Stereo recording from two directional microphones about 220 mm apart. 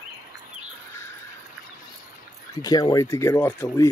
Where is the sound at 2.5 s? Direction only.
15° left (ahead or behind).